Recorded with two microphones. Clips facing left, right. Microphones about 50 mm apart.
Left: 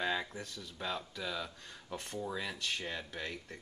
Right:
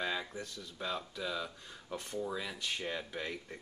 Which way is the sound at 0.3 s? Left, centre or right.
Centre.